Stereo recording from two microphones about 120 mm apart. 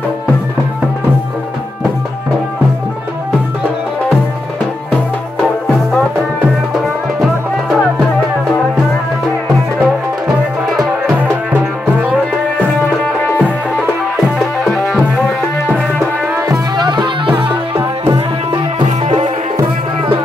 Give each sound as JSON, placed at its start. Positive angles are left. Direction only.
{"t": 5.7, "sound": "music", "side_deg": 5}
{"t": 10.2, "sound": "music", "side_deg": 0}
{"t": 12.1, "sound": "music", "side_deg": 10}
{"t": 14.6, "sound": "music", "side_deg": 0}
{"t": 16.3, "sound": "music", "side_deg": -35}
{"t": 18.1, "sound": "music", "side_deg": -40}
{"t": 18.9, "sound": "music", "side_deg": -65}